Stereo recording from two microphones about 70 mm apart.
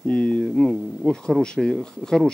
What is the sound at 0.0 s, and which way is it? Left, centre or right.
Speech, centre.